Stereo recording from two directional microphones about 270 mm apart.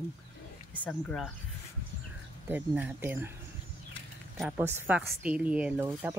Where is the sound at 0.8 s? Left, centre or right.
Centre.